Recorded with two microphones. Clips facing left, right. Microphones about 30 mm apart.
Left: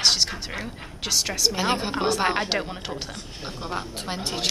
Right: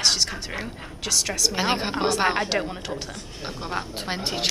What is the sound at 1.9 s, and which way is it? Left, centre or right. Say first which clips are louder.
Speech: right 2 dB; centre.